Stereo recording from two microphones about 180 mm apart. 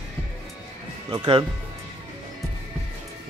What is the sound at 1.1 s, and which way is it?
Speech, 25° right (ahead or behind).